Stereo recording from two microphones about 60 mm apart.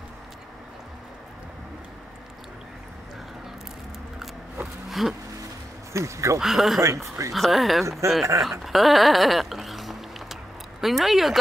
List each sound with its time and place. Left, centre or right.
4.8 s a sound: centre
5.9 s speech: right
6.4 s speech: centre
6.8 s speech: right
7.3 s speech: centre
8.0 s speech: right
8.4 s speech: centre